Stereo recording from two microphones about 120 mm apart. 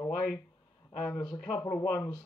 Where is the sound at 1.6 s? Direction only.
20° left (ahead or behind).